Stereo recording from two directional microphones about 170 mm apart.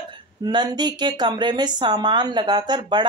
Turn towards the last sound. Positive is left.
turn(degrees=-25)  # may be behind; listen again after turning